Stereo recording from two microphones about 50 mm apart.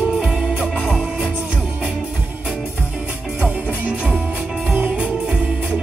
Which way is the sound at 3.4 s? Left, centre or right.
Right.